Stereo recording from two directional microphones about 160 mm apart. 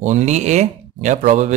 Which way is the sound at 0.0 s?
45° right (ahead or behind).